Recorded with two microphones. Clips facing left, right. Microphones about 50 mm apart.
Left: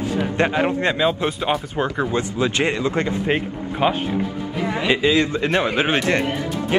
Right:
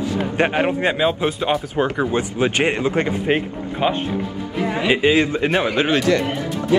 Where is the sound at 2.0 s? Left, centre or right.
Right.